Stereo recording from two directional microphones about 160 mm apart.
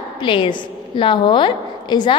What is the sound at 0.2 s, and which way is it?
A woman's voice, 30° left (ahead or behind).